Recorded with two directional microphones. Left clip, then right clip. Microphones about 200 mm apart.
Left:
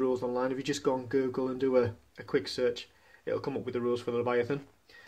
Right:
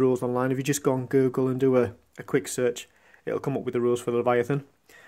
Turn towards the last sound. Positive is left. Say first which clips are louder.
# right 6 dB
turn(degrees=-45)  # may be behind; listen again after turning